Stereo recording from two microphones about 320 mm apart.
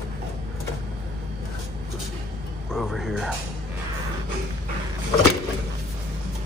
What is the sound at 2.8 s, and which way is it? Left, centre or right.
Speech, centre.